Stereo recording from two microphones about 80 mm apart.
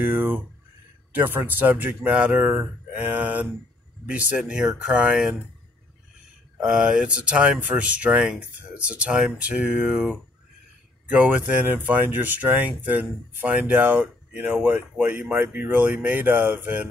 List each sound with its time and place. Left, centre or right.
0.0 s a sound: right
1.1 s speech: right
6.6 s speech: centre